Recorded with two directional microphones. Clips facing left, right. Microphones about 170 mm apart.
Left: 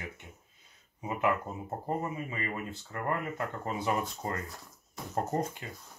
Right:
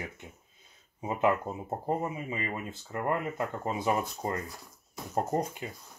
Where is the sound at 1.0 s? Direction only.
25° right (ahead or behind).